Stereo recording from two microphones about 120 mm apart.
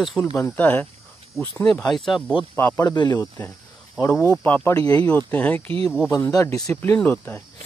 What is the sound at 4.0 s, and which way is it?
Speech, 25° left (ahead or behind).